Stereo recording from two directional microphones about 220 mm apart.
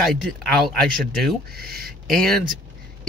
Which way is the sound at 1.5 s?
40° right (ahead or behind).